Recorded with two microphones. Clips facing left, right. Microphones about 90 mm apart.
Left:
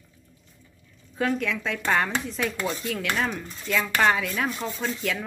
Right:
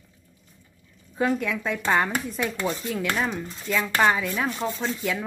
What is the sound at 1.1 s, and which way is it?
Speech, 10° right (ahead or behind).